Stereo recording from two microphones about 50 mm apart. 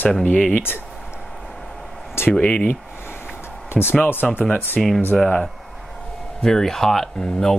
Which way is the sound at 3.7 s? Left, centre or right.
Left.